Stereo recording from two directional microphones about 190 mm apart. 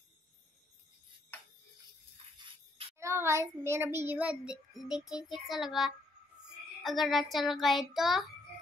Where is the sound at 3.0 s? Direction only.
15° right (ahead or behind).